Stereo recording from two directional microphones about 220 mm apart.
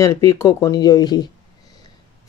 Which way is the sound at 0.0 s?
15° left (ahead or behind).